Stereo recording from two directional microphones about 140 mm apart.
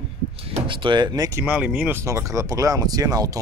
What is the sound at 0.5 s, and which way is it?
Speech, 35° right (ahead or behind).